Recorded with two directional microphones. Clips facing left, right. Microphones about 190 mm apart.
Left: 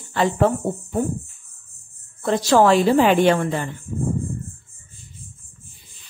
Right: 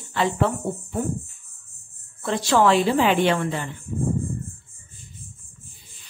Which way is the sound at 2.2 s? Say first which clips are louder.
Left 3 dB; 40° left (ahead or behind).